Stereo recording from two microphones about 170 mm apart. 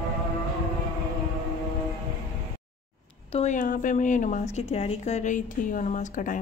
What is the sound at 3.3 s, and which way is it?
A woman's voice, 45° left (ahead or behind).